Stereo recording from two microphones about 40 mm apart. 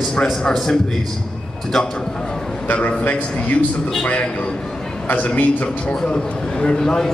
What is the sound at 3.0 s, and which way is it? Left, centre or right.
Speech, left.